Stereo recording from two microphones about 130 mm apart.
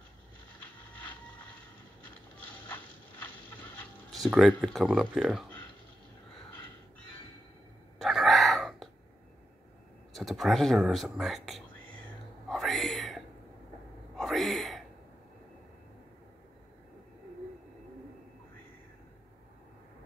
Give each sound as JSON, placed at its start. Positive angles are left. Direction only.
{"t": 3.4, "sound": "a sound", "side_deg": 15}
{"t": 4.1, "sound": "speech", "side_deg": 0}
{"t": 8.0, "sound": "chicken", "side_deg": 0}
{"t": 10.1, "sound": "speech", "side_deg": 0}
{"t": 12.4, "sound": "whispering", "side_deg": 0}
{"t": 14.1, "sound": "a sound", "side_deg": 0}